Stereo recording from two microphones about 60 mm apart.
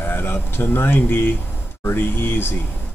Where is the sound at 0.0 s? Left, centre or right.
Left.